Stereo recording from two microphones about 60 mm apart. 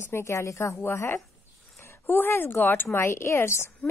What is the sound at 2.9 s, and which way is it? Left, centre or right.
Speech, left.